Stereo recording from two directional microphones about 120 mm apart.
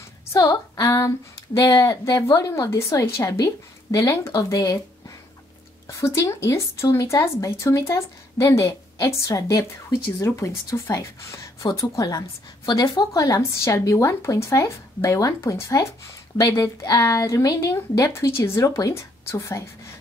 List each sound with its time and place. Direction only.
0.3 s speech: 30° left (ahead or behind)
5.9 s speech: 25° left (ahead or behind)